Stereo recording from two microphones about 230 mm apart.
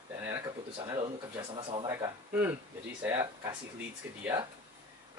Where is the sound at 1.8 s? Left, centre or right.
Centre.